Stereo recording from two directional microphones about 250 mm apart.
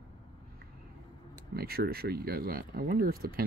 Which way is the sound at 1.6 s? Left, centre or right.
Right.